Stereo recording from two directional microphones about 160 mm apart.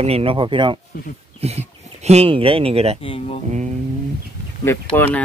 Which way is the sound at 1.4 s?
40° right (ahead or behind).